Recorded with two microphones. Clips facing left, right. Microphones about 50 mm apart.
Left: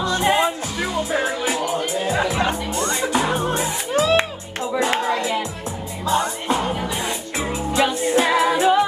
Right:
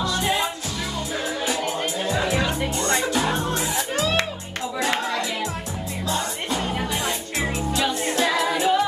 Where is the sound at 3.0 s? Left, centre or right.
Centre.